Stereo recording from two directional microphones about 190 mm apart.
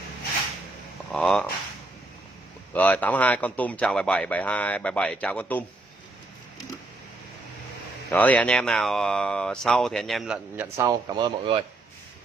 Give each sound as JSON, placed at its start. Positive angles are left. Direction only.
{"t": 1.1, "sound": "speech", "side_deg": 5}
{"t": 2.7, "sound": "speech", "side_deg": 10}
{"t": 8.1, "sound": "speech", "side_deg": 10}
{"t": 10.9, "sound": "speech", "side_deg": -20}